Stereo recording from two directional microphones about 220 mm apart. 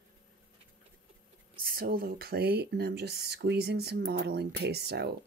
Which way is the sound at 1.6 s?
40° right (ahead or behind).